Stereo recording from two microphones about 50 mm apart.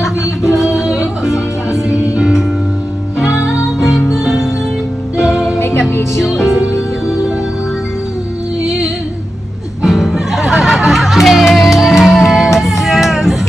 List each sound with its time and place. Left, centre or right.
0.0 s music: centre
4.1 s music: centre
5.6 s music: left
6.2 s music: centre
8.6 s music: centre